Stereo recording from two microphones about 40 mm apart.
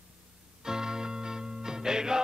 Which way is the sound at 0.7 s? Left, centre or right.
Centre.